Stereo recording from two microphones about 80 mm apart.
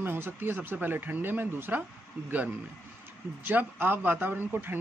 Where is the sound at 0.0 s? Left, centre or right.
Right.